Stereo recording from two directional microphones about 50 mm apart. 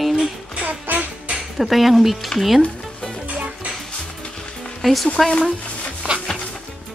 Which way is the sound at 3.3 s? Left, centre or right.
Right.